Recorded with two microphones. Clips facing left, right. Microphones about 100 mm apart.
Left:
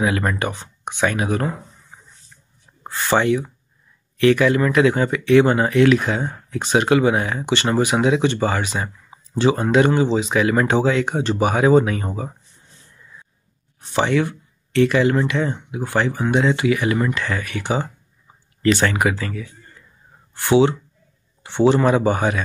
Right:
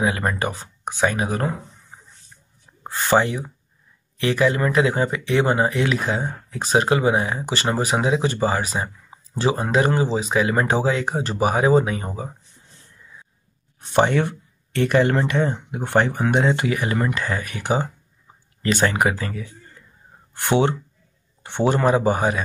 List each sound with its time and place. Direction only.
0.0 s speech: 25° right (ahead or behind)
2.9 s a sound: 45° right (ahead or behind)
3.2 s speech: 35° right (ahead or behind)
7.4 s speech: 35° right (ahead or behind)
13.9 s speech: 45° right (ahead or behind)
16.3 s speech: 40° right (ahead or behind)
18.9 s speech: 35° right (ahead or behind)
21.4 s a man's voice: 50° right (ahead or behind)
21.9 s speech: 35° right (ahead or behind)